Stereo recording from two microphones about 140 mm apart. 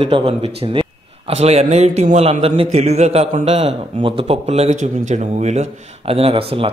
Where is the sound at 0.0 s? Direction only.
45° right (ahead or behind).